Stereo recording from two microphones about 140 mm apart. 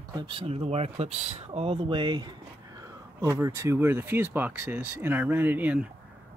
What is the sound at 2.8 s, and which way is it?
Speech, 20° right (ahead or behind).